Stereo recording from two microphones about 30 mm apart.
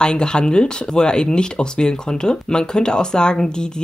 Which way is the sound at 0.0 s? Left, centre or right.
Left.